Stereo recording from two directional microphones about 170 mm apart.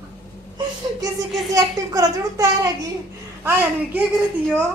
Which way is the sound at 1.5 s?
20° right (ahead or behind).